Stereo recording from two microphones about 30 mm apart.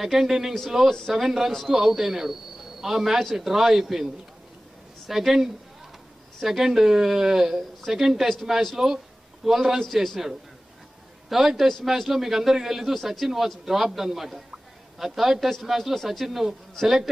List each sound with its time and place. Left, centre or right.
0.0 s speech: centre
0.8 s speech: centre
1.1 s a man's voice: centre
11.2 s speech: centre
12.9 s speech: centre
13.7 s speech: centre